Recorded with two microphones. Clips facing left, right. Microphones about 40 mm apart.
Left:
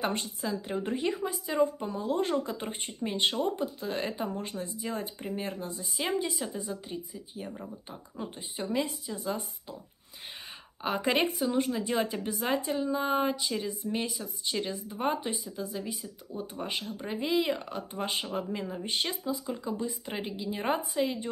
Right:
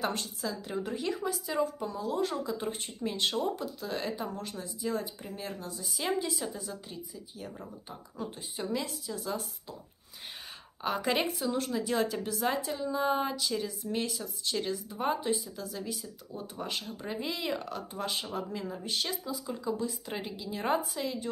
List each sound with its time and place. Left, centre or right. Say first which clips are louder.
0.0 s speech: left 1 dB; left
6.6 s speech: left 4 dB; left
7.5 s speech: left 2 dB; centre
8.2 s speech: even; left
10.8 s speech: left 2 dB; centre